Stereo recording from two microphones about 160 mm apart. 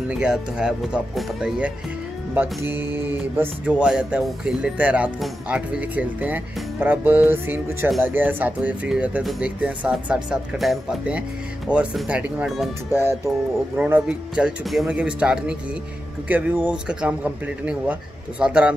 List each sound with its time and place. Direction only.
0.1 s speech: 5° right (ahead or behind)
2.3 s music: 15° right (ahead or behind)
12.9 s music: 15° right (ahead or behind)